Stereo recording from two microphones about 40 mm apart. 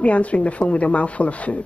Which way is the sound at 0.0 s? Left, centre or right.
Left.